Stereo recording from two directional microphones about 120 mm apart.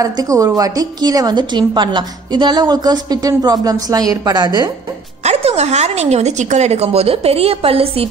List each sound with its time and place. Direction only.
0.0 s a woman's voice: 30° right (ahead or behind)
5.2 s a woman's voice: 60° right (ahead or behind)